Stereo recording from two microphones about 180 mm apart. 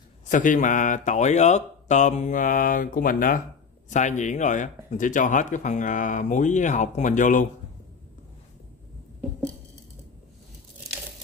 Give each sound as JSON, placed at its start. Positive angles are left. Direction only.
{"t": 0.3, "sound": "speech", "side_deg": 45}